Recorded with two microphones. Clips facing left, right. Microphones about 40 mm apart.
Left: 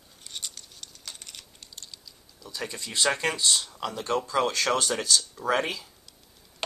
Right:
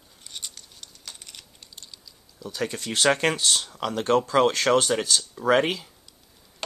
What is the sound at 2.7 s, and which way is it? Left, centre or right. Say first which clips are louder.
Speech: right 2 dB; right.